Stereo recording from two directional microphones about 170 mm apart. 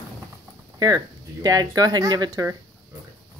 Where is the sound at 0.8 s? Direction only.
20° right (ahead or behind).